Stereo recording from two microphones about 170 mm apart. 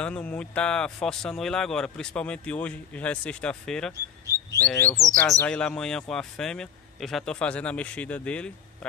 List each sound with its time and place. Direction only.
0.0 s speech: 5° left (ahead or behind)
3.9 s a sound: 20° right (ahead or behind)
4.6 s speech: 10° left (ahead or behind)